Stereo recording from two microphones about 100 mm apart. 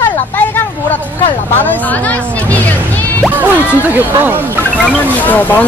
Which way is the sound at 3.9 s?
20° right (ahead or behind).